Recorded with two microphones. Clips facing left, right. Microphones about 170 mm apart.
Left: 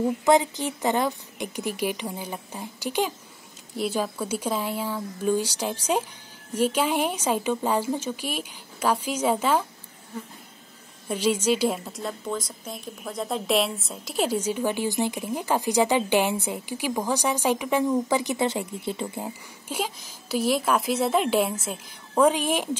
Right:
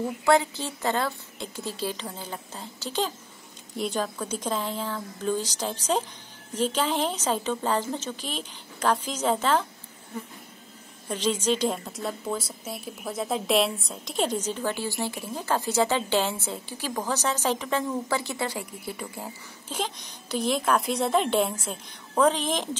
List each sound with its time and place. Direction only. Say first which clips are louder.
0.2 s a woman's voice: even; 15° left (ahead or behind)
11.1 s a woman's voice: left 3 dB; 10° left (ahead or behind)
19.7 s a woman's voice: left 2 dB; 5° left (ahead or behind)